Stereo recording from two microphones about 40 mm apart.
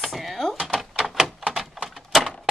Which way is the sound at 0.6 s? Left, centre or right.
Centre.